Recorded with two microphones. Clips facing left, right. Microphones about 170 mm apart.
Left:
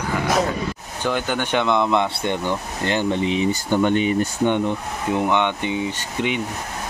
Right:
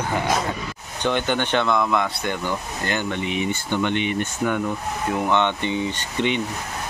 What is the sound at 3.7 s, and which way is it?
Speech, 40° left (ahead or behind).